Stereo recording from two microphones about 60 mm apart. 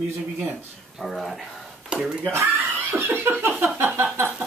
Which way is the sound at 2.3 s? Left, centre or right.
Right.